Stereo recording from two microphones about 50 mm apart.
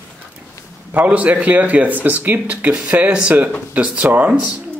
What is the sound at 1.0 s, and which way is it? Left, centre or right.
Speech, right.